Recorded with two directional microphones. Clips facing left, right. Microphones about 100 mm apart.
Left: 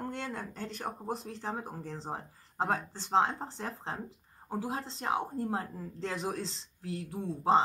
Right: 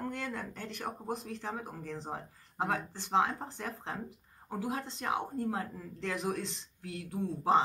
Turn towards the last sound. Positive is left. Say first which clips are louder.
# left 1 dB
turn(degrees=30)  # may be behind; listen again after turning